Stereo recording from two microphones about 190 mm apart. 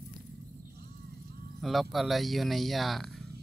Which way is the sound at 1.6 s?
Centre (ahead or behind).